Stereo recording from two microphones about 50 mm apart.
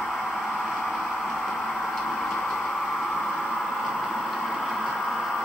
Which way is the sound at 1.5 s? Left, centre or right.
Left.